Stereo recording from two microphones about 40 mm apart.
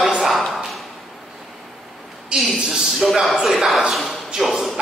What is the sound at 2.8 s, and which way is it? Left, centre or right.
A man's voice, centre.